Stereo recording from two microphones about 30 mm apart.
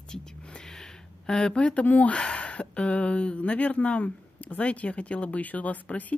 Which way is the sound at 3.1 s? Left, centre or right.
Left.